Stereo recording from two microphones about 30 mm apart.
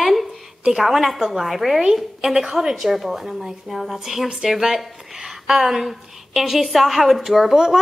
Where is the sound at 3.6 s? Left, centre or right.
Centre.